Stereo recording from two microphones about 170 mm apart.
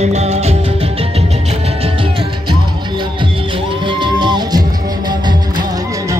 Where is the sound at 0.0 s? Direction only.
40° right (ahead or behind).